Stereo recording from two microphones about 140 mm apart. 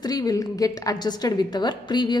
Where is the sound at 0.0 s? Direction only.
25° left (ahead or behind).